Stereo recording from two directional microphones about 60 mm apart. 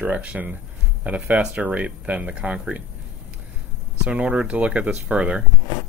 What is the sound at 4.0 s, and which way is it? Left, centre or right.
Speech, centre.